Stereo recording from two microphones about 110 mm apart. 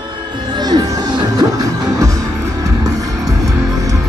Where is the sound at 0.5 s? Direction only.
40° right (ahead or behind).